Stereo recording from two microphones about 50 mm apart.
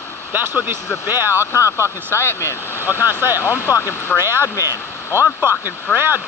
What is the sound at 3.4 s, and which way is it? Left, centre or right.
Speech, left.